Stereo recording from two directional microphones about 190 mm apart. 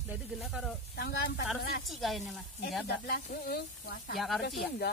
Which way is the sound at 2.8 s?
55° left (ahead or behind).